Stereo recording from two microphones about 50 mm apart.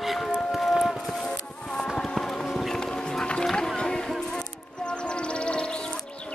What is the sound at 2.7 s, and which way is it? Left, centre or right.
Music, centre.